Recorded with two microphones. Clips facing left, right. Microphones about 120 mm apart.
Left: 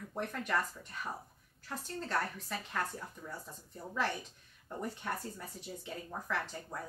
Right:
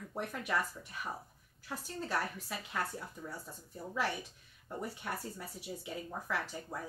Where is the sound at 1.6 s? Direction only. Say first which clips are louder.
Even; 10° right (ahead or behind).